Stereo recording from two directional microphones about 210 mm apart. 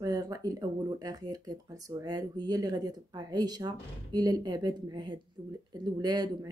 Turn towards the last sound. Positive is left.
turn(degrees=-20)  # may be behind; listen again after turning